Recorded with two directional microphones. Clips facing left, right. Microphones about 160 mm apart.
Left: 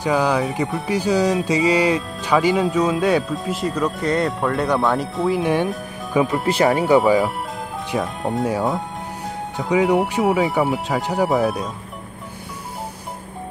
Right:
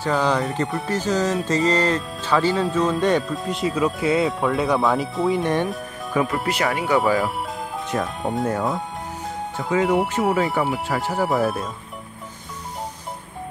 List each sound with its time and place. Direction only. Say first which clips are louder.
0.0 s speech: left 2 dB; 10° left (ahead or behind)
0.8 s speech: left 5 dB; 10° left (ahead or behind)
6.4 s speech: left 6 dB; 30° left (ahead or behind)
7.9 s speech: left 2 dB; centre (ahead or behind); by 11.2 s 15° left (ahead or behind)